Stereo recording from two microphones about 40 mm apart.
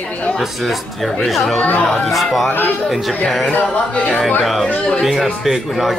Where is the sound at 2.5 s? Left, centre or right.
Left.